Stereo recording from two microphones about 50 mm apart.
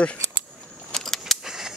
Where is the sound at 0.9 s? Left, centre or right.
Centre.